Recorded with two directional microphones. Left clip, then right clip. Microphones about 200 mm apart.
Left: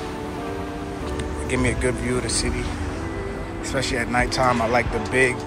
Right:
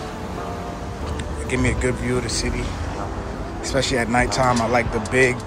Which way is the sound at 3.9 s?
15° right (ahead or behind).